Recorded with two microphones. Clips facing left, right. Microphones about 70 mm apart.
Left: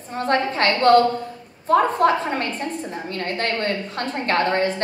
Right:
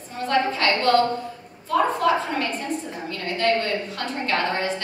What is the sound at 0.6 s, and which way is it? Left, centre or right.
A woman's voice, left.